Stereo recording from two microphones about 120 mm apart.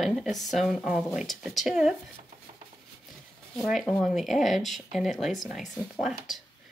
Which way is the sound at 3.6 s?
Centre (ahead or behind).